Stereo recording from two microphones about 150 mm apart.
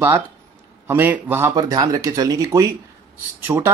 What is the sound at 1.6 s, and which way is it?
Speech, 25° right (ahead or behind).